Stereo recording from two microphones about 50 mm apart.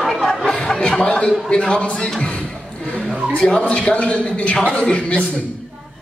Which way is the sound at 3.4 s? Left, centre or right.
Left.